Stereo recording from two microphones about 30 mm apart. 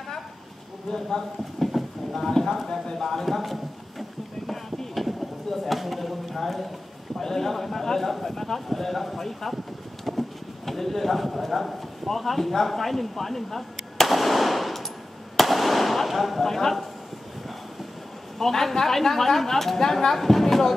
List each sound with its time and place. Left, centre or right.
0.8 s speech: left
1.7 s vehicle: centre
2.2 s speech: centre
4.5 s chop: centre
7.2 s speech: centre
15.3 s fireworks: centre
16.4 s speech: centre
18.4 s speech: centre